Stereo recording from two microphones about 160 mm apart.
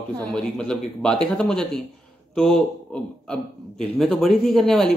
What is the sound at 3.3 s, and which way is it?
Speech, 5° left (ahead or behind).